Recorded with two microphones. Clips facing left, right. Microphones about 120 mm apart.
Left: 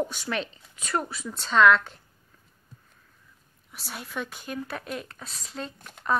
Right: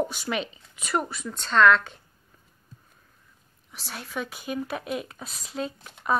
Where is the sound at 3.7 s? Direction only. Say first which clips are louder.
Right 1 dB; centre (ahead or behind).